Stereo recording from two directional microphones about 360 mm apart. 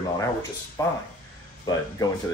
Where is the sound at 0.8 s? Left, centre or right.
Centre.